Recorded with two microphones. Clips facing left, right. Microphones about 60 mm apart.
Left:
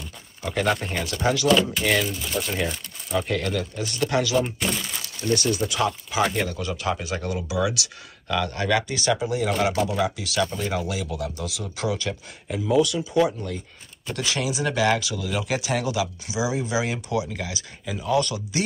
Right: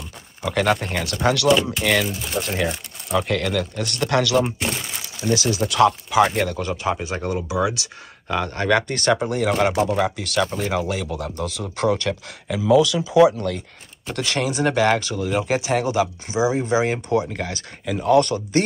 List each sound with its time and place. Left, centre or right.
0.5 s speech: right
1.2 s speech: right
1.5 s speech: centre
2.3 s speech: right
3.1 s speech: right
4.6 s crumpling: centre
5.3 s speech: right
6.6 s speech: right
12.4 s speech: right
13.3 s speech: right
14.0 s speech: right